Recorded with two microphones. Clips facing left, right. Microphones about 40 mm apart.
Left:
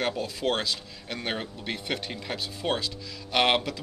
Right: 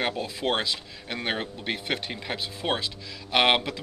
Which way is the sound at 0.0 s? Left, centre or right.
Right.